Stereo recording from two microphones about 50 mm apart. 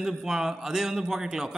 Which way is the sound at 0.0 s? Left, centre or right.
Centre.